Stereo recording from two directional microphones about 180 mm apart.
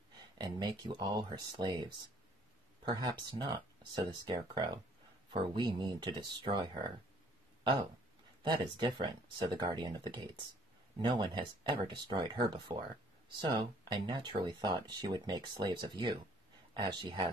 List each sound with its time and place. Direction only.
0.4 s speech: 25° right (ahead or behind)
8.4 s speech: 25° right (ahead or behind)